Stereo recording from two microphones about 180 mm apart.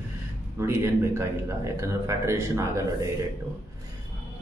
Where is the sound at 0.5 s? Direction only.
15° right (ahead or behind).